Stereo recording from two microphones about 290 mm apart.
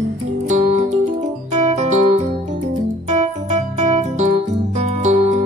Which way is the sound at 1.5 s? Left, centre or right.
Right.